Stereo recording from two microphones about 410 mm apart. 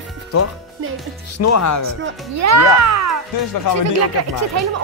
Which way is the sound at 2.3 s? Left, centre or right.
Right.